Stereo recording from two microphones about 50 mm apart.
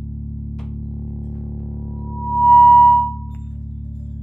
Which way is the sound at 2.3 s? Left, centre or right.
Left.